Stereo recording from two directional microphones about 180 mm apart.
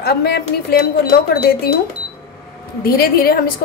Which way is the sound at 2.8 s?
55° left (ahead or behind).